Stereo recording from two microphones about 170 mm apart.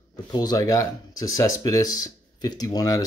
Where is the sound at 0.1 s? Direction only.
25° left (ahead or behind).